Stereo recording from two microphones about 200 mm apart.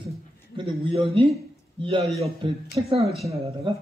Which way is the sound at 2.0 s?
Centre (ahead or behind).